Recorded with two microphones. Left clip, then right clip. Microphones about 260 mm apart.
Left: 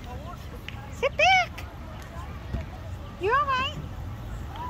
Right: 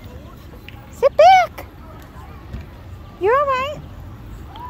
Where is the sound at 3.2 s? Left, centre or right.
Centre.